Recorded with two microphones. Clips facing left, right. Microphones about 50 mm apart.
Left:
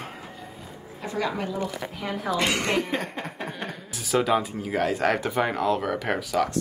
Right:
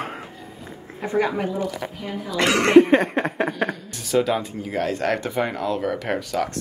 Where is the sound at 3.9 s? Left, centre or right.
Centre.